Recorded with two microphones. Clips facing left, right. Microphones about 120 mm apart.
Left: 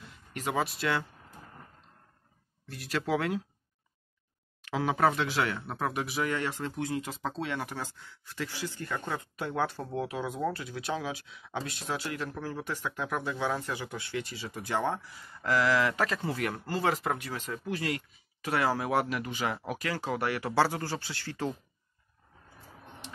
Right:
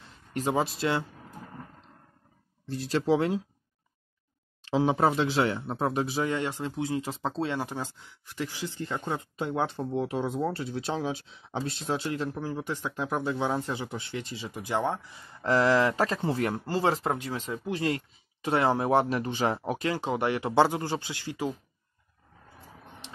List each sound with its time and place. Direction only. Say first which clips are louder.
0.3 s speech: right 4 dB; 30° right (ahead or behind)
2.6 s speech: right 5 dB; 30° right (ahead or behind)
4.6 s speech: right 3 dB; 25° right (ahead or behind)
12.4 s speech: right 3 dB; 15° right (ahead or behind)